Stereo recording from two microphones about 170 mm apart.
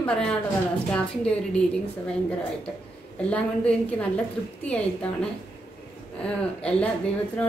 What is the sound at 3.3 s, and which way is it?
A woman's voice, 10° left (ahead or behind).